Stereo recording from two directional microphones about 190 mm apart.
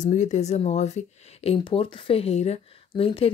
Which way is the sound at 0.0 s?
40° left (ahead or behind).